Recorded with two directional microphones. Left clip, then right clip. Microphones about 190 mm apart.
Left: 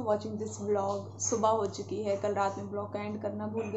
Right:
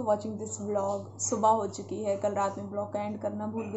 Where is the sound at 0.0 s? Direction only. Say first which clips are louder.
Right 2 dB; 15° right (ahead or behind).